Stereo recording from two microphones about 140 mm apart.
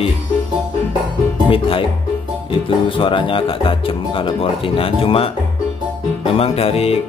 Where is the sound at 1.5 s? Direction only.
40° left (ahead or behind).